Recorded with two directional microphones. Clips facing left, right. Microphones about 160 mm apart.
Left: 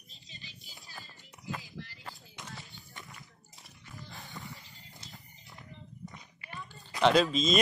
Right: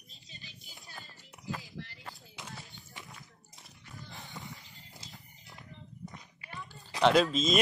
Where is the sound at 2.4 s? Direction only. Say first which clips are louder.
Even; 20° right (ahead or behind).